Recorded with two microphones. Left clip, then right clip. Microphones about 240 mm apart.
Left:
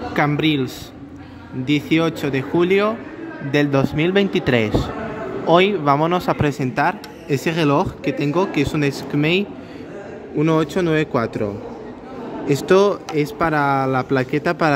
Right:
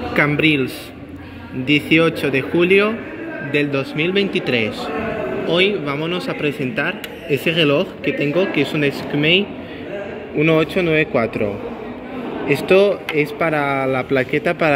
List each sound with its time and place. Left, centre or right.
0.1 s speech: centre
1.9 s speech: centre
3.5 s a man's voice: left
12.4 s speech: left